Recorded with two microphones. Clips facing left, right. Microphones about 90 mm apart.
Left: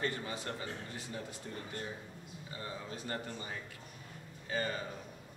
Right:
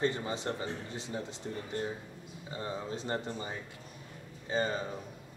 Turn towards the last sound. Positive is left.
turn(degrees=-25)  # may be behind; listen again after turning